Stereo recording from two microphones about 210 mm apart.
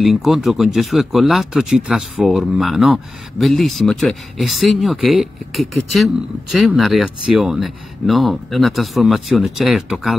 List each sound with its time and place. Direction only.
0.0 s speech: centre (ahead or behind)